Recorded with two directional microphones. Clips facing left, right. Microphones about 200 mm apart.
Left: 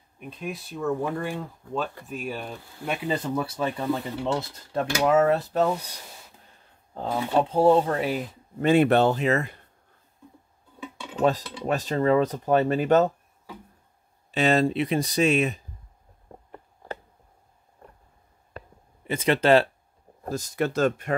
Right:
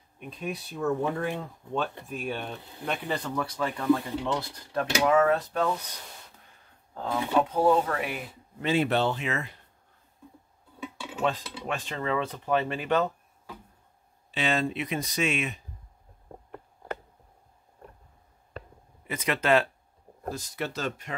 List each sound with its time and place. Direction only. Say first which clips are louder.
0.2 s speech: even; centre (ahead or behind)
2.0 s speech: left 1 dB; centre (ahead or behind)
3.2 s speech: left 3 dB; 25° left (ahead or behind)
6.9 s speech: left 2 dB; 20° left (ahead or behind)
8.6 s speech: left 6 dB; 55° left (ahead or behind)
11.1 s cutlery: left 6 dB; 40° left (ahead or behind)
11.6 s speech: left 9 dB; 40° left (ahead or behind)
14.3 s speech: left 7 dB; 40° left (ahead or behind)
19.0 s speech: left 6 dB; 30° left (ahead or behind)
20.2 s speech: left 6 dB; 45° left (ahead or behind)